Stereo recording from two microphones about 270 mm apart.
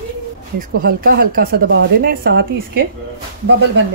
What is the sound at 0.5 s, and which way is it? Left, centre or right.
Speech, right.